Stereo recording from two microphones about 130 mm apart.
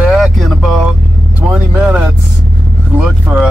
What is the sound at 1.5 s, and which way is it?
Vehicle, 10° right (ahead or behind).